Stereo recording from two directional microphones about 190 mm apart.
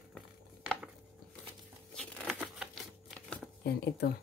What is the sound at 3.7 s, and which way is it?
Speech, 60° left (ahead or behind).